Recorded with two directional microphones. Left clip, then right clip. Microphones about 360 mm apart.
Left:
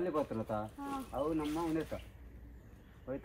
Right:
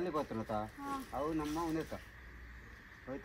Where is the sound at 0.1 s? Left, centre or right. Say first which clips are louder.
Left 2 dB; right.